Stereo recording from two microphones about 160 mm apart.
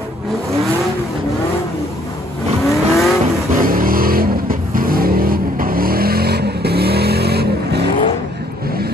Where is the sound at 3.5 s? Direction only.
60° right (ahead or behind); by 7.9 s 85° right.